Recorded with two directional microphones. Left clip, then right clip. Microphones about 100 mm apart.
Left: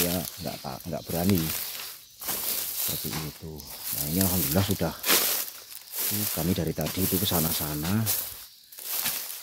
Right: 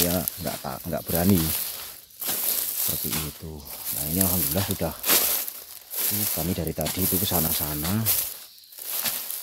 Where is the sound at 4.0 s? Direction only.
5° left (ahead or behind).